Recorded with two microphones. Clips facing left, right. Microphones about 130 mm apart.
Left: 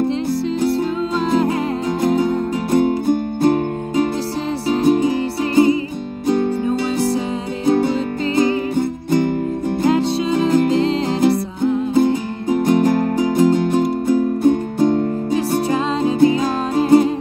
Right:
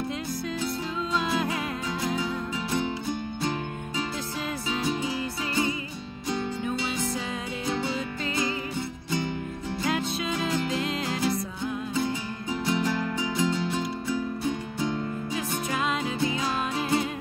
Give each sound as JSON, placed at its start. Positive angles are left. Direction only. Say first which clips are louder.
{"t": 1.4, "sound": "music", "louder": "left 11 dB", "side_deg": 45}
{"t": 6.2, "sound": "music", "louder": "left 13 dB", "side_deg": 55}
{"t": 7.6, "sound": "music", "louder": "left 14 dB", "side_deg": 50}
{"t": 9.8, "sound": "music", "louder": "left 12 dB", "side_deg": 30}
{"t": 10.7, "sound": "music", "louder": "left 12 dB", "side_deg": 30}
{"t": 11.9, "sound": "music", "louder": "left 13 dB", "side_deg": 50}